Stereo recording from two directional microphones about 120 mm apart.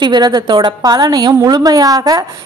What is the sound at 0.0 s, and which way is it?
A woman's voice, 35° right (ahead or behind).